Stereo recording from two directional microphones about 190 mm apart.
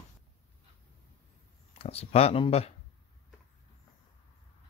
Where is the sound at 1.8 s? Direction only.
30° left (ahead or behind).